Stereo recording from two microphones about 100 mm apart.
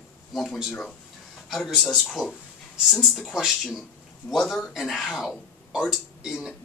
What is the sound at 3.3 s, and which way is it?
Speech, 5° right (ahead or behind).